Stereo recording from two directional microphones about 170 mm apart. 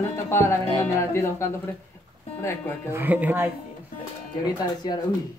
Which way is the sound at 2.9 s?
10° right (ahead or behind).